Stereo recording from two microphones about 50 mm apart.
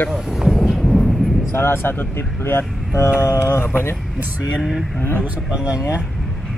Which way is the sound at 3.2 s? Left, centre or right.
Left.